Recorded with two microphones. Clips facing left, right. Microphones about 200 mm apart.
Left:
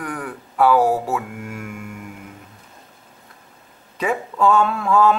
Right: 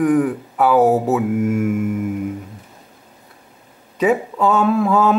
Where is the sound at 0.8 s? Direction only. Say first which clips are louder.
Right 5 dB; 20° right (ahead or behind).